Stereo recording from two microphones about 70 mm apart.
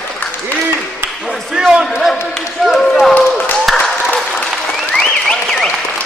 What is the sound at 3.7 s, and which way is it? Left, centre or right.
Applause, centre.